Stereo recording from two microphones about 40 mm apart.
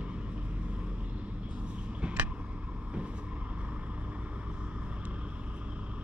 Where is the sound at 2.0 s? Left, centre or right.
Right.